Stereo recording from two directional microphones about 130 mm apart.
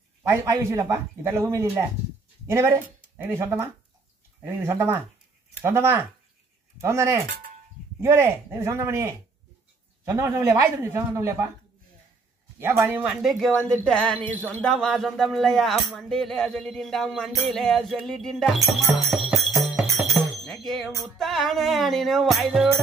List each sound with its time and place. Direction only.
0.3 s a man's voice: 20° right (ahead or behind)
12.5 s a man's voice: 20° right (ahead or behind)
13.0 s speech: 5° right (ahead or behind)
19.2 s jingle bell: centre (ahead or behind)
20.1 s music: centre (ahead or behind)